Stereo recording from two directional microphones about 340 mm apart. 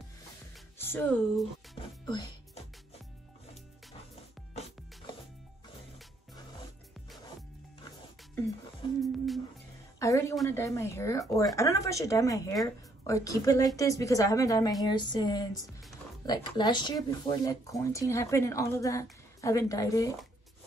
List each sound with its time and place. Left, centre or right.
0.7 s speech: centre
1.8 s music: centre
9.0 s music: centre
9.9 s speech: centre